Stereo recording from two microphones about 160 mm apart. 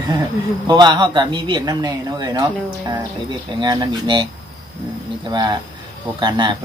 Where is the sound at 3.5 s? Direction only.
30° right (ahead or behind).